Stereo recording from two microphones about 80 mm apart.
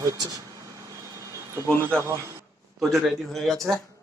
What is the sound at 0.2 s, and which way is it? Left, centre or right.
Speech, right.